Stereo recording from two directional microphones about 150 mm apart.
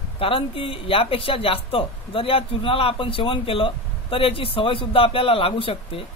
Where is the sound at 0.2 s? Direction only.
35° left (ahead or behind).